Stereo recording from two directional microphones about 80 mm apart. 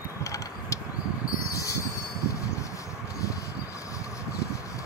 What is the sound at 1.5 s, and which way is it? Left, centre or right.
Train, left.